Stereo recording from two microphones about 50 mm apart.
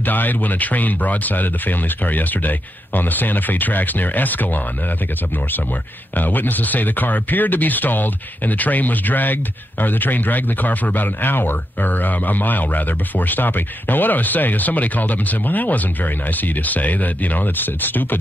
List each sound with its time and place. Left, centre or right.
0.0 s speech: left
6.1 s speech: left